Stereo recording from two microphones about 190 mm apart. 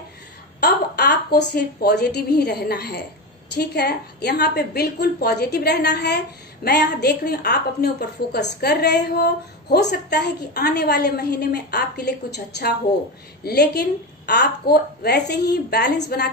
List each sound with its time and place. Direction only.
0.6 s a woman's voice: 55° left (ahead or behind)